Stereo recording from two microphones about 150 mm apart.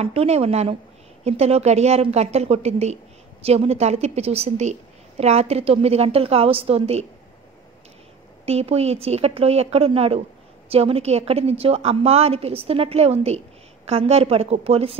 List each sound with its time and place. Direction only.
0.0 s a woman's voice: 40° right (ahead or behind)
8.5 s a woman's voice: 45° right (ahead or behind)